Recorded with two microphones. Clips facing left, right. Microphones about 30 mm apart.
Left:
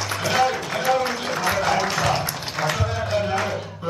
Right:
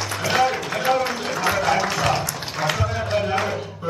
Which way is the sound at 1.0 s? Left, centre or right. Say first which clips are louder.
Even; centre.